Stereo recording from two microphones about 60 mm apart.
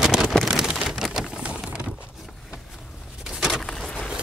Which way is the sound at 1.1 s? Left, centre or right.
Centre.